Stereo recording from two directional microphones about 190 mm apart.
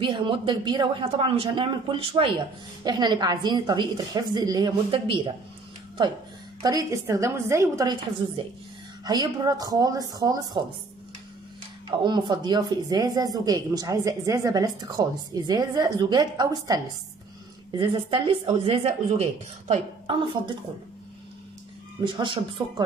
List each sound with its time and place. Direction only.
0.0 s speech: 25° right (ahead or behind)
6.6 s a woman's voice: 20° right (ahead or behind)
9.0 s speech: 20° right (ahead or behind)
11.9 s speech: 25° right (ahead or behind)
22.0 s speech: 25° right (ahead or behind)